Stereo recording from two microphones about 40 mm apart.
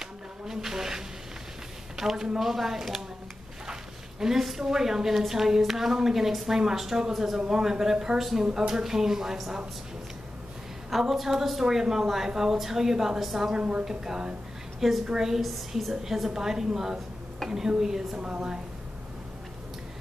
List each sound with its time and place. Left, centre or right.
0.0 s a sound: centre
2.0 s a woman's voice: centre
4.2 s a woman's voice: centre
10.9 s a woman's voice: centre
13.6 s a woman's voice: right
13.8 s a woman's voice: centre